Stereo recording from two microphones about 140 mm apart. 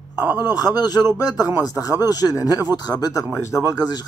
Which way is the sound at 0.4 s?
30° left (ahead or behind).